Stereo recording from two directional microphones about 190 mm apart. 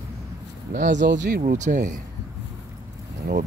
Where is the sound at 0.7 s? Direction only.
40° right (ahead or behind).